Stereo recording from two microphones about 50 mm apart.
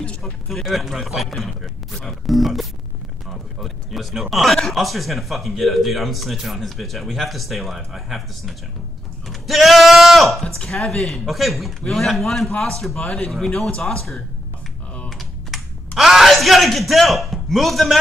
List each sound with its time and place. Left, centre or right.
0.2 s speech: centre
9.3 s sheep: centre
10.7 s speech: centre
15.0 s computer keyboard: centre
16.0 s speech: centre